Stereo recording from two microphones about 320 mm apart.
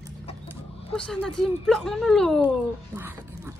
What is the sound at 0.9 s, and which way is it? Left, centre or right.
Speech, centre.